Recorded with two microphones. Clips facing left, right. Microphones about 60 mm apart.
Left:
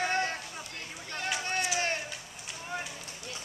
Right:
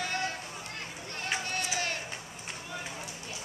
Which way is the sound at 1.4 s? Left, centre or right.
Left.